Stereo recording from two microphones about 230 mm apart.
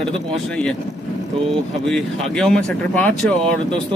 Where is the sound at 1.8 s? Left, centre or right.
Centre.